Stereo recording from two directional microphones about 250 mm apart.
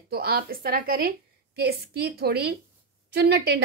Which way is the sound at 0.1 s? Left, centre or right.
Right.